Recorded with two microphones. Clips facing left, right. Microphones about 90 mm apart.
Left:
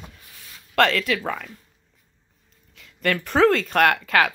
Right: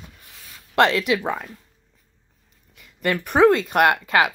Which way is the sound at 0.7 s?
20° right (ahead or behind).